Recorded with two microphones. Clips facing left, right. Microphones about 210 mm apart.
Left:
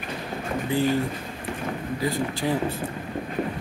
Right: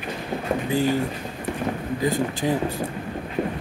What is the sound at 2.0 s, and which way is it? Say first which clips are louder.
Speech: right 3 dB; 20° right (ahead or behind).